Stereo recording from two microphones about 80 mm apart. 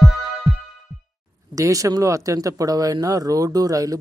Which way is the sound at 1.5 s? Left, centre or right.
Right.